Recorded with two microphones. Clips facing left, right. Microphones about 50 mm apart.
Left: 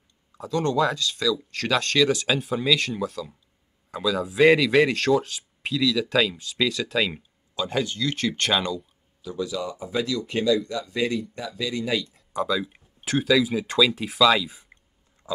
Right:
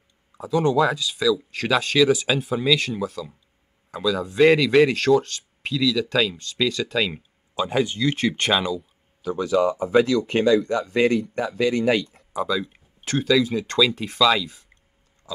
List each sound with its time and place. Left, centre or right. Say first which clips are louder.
0.4 s speech: right 3 dB; centre
7.5 s speech: right 4 dB; centre
8.5 s speech: right 2 dB; centre
9.2 s speech: right 9 dB; right
12.3 s speech: even; centre
14.7 s a sound: left 4 dB; centre
15.2 s pig: left 4 dB; left